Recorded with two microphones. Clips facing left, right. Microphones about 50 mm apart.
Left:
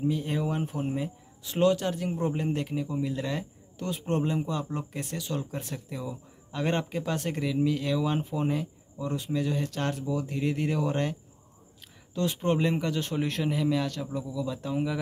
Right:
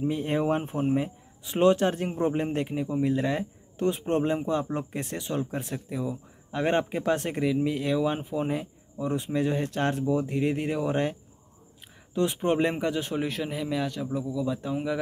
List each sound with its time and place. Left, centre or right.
0.1 s speech: right; by 15.0 s centre